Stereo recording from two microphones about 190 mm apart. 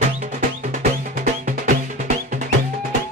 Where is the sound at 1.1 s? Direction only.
45° right (ahead or behind).